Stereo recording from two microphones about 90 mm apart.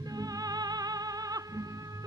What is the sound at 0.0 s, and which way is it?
Music, 45° right (ahead or behind).